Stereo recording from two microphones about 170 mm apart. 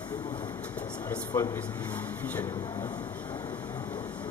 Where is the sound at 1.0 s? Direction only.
15° left (ahead or behind).